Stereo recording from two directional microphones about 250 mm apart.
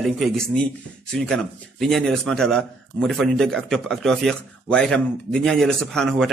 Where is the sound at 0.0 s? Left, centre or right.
Centre.